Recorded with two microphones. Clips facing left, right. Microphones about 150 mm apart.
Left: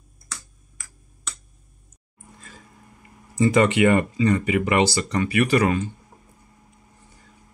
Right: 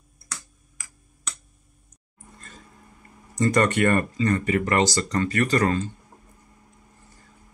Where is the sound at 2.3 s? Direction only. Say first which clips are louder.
Left 1 dB; 5° left (ahead or behind).